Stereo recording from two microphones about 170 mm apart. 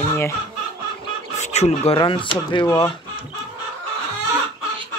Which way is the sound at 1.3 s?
40° left (ahead or behind).